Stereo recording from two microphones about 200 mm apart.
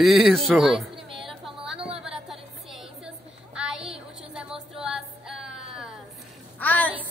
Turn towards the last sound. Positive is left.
turn(degrees=10)  # may be behind; listen again after turning